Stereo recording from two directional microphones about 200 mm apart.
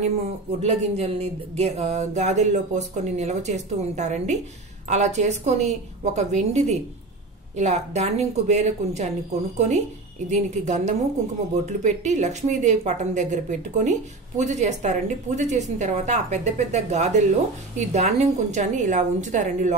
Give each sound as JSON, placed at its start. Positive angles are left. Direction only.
{"t": 0.6, "sound": "a woman's voice", "side_deg": -30}
{"t": 10.3, "sound": "a woman's voice", "side_deg": -35}